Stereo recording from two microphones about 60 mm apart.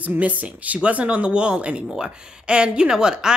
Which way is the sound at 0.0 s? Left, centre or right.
Right.